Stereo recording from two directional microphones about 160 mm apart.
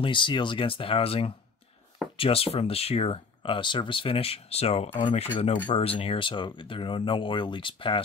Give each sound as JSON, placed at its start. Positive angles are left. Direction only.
{"t": 0.0, "sound": "speech", "side_deg": 30}